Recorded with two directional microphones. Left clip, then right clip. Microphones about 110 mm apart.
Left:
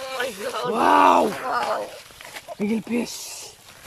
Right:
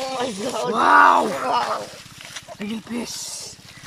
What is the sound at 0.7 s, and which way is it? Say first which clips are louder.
Speech: right 2 dB; 25° left (ahead or behind).